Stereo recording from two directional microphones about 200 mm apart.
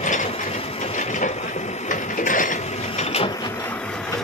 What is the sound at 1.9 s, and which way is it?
Train, 40° left (ahead or behind).